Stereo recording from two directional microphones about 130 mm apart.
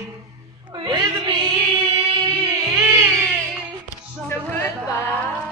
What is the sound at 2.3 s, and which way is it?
Music, 25° right (ahead or behind).